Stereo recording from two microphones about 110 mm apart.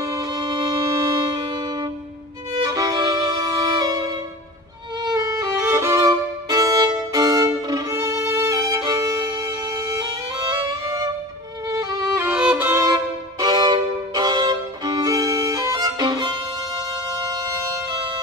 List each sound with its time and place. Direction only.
0.1 s violin: 35° right (ahead or behind)
2.5 s violin: 35° right (ahead or behind)
9.4 s music: 25° right (ahead or behind)
11.7 s music: 25° right (ahead or behind)
12.8 s violin: 35° right (ahead or behind)
17.3 s music: 35° right (ahead or behind)